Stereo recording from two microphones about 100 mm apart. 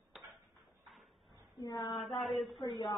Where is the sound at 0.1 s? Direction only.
Centre (ahead or behind).